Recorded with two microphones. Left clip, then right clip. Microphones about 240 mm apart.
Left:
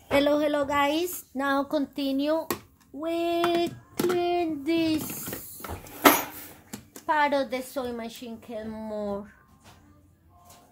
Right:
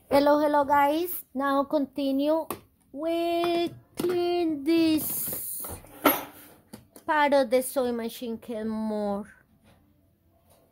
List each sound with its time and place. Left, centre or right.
0.1 s speech: right
3.0 s child singing: right
5.1 s a sound: right
7.1 s a woman's voice: right